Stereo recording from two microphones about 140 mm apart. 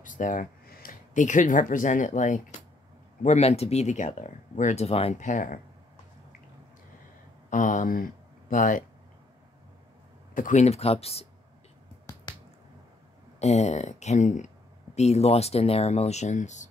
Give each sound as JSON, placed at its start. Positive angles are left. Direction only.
{"t": 0.0, "sound": "speech", "side_deg": 70}
{"t": 3.2, "sound": "speech", "side_deg": 50}
{"t": 5.2, "sound": "speech", "side_deg": 70}
{"t": 7.4, "sound": "speech", "side_deg": 60}
{"t": 10.3, "sound": "speech", "side_deg": 65}
{"t": 13.4, "sound": "speech", "side_deg": 55}